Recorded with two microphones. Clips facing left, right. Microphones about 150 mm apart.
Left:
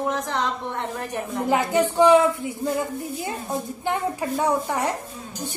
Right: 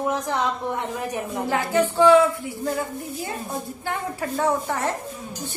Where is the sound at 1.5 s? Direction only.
15° left (ahead or behind).